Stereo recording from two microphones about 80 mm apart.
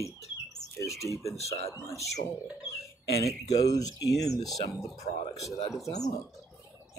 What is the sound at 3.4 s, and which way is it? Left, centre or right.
Speech, left.